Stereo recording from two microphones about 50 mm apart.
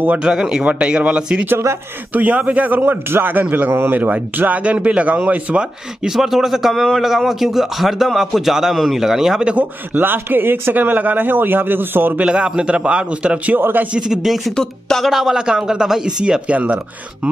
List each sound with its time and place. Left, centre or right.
0.2 s speech: centre
6.0 s speech: centre
9.6 s speech: right
12.2 s speech: right
13.6 s a man's voice: right
13.9 s speech: centre
14.5 s speech: centre
15.0 s speech: centre
15.3 s speech: centre